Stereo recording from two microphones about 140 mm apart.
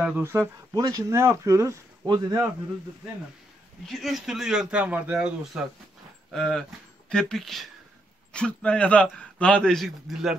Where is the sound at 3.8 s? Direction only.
Centre (ahead or behind).